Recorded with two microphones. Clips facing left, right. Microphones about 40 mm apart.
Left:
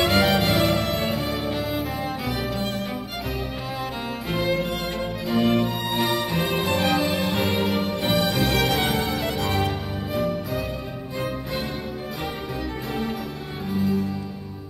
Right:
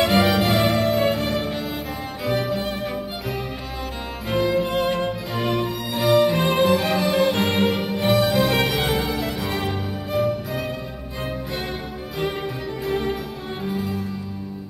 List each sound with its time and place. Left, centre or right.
0.0 s music: centre
4.3 s music: centre
4.6 s music: right
5.5 s music: centre
6.2 s music: centre
12.8 s music: centre